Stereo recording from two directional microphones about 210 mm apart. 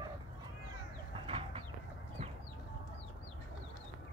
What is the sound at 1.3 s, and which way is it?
Chicken, 25° right (ahead or behind).